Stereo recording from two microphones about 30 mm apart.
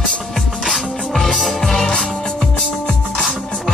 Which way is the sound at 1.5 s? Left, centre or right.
Left.